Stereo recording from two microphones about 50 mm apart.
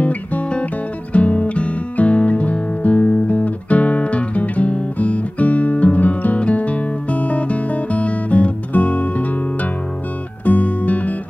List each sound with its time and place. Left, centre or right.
0.0 s music: left